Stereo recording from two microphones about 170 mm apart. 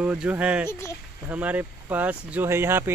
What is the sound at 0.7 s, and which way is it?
Speech, 15° left (ahead or behind).